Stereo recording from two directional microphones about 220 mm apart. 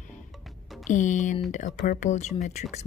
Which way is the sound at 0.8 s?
35° left (ahead or behind).